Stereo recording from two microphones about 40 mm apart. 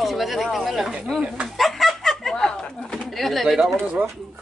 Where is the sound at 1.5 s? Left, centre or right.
Centre.